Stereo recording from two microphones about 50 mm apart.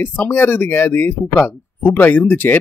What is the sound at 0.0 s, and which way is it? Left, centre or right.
Speech, left.